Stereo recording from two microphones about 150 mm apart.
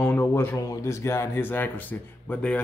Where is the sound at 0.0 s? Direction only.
15° left (ahead or behind).